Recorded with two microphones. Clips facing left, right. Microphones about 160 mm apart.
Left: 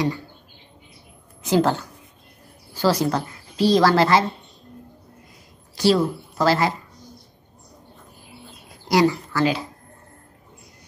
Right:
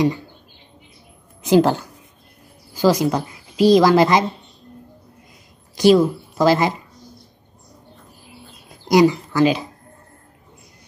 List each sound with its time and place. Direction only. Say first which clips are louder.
1.4 s a woman's voice: right 5 dB; 15° right (ahead or behind)
5.8 s a woman's voice: right 5 dB; 15° right (ahead or behind)
8.8 s speech: right 4 dB; 20° right (ahead or behind)